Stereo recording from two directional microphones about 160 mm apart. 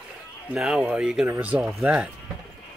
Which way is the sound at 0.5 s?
5° right (ahead or behind).